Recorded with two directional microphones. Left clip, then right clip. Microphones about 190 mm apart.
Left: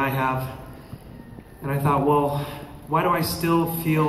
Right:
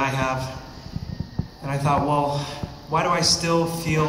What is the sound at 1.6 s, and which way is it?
A man's voice, 50° right (ahead or behind).